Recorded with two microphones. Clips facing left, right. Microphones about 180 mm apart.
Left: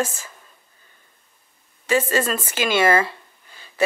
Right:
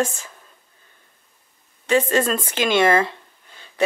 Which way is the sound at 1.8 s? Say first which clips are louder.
Right 2 dB; 5° left (ahead or behind).